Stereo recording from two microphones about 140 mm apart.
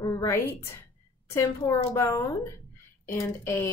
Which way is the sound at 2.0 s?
20° left (ahead or behind).